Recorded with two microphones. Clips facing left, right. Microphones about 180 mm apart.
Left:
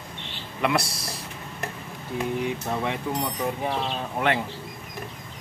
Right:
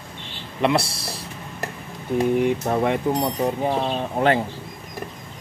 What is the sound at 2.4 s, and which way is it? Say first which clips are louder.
Speech: right 7 dB; 50° right (ahead or behind).